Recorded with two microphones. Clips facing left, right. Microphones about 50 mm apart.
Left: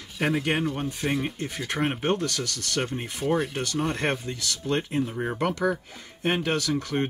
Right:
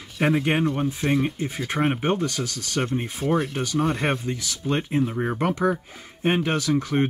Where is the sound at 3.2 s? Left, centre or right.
Centre.